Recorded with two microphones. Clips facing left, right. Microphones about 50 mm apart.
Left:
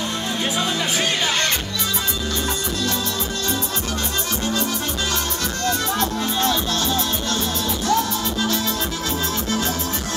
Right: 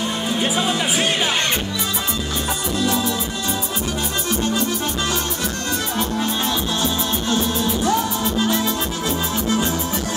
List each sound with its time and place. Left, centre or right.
0.4 s music: centre
7.2 s music: centre